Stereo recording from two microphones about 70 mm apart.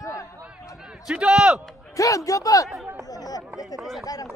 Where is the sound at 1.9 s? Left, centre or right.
Left.